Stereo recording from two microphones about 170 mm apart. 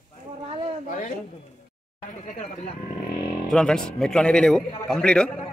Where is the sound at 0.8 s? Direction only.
50° left (ahead or behind).